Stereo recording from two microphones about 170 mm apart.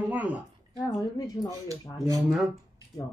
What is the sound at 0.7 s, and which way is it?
Speech, 20° left (ahead or behind).